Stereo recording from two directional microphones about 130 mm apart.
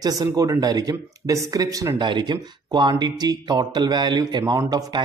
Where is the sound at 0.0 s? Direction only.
30° right (ahead or behind).